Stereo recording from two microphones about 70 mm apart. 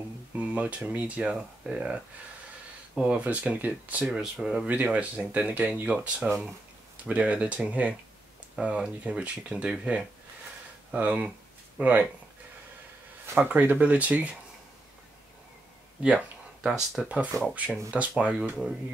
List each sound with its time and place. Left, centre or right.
0.4 s speech: centre
3.0 s speech: centre
4.0 s speech: centre
4.6 s speech: right
13.3 s speech: right
16.0 s speech: centre
16.6 s speech: centre
17.6 s speech: centre